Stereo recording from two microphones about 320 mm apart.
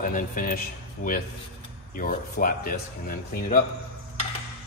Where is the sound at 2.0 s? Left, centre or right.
Left.